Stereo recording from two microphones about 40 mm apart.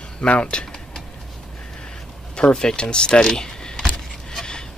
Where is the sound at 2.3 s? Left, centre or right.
Centre.